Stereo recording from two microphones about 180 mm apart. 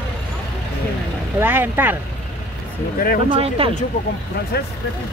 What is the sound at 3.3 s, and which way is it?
Speech, 30° right (ahead or behind).